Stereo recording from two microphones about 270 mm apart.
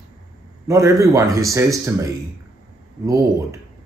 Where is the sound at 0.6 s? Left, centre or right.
Centre.